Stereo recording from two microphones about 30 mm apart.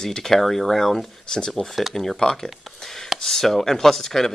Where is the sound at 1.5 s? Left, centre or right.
Centre.